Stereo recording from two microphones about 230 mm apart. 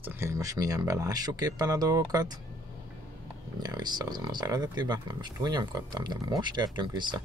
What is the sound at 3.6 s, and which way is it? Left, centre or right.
Speech, centre.